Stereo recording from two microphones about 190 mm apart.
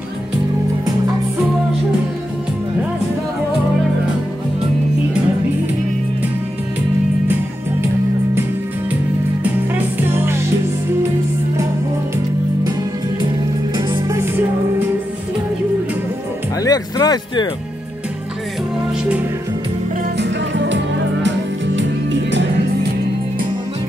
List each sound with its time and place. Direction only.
9.4 s music: 10° right (ahead or behind)
13.7 s music: 15° right (ahead or behind)
16.6 s a sound: 20° left (ahead or behind)
20.2 s music: 70° right (ahead or behind)